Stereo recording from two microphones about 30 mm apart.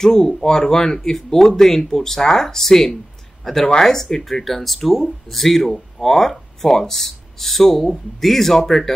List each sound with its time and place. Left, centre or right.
0.0 s speech: centre